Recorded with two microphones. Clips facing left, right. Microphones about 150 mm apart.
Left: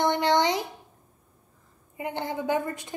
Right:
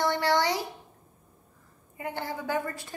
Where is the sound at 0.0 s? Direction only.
20° left (ahead or behind).